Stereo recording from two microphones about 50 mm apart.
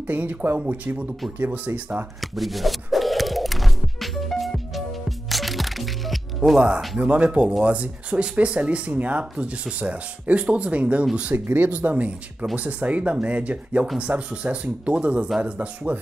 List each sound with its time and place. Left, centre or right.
0.0 s speech: right
1.7 s speech: right
2.3 s music: centre
7.0 s speech: right
11.3 s speech: right